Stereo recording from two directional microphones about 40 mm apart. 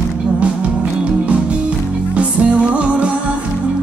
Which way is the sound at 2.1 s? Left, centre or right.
Right.